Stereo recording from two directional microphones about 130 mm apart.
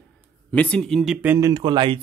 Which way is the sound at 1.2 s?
15° right (ahead or behind).